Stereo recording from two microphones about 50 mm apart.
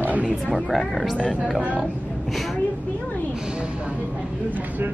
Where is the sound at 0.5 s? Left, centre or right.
Centre.